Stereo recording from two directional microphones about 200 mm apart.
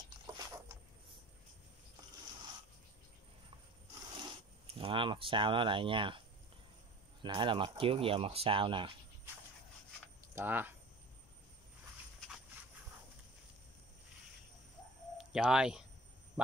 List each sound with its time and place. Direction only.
0.4 s a sound: 15° right (ahead or behind)
4.2 s speech: 25° right (ahead or behind)
10.3 s speech: 10° right (ahead or behind)
15.1 s speech: 5° right (ahead or behind)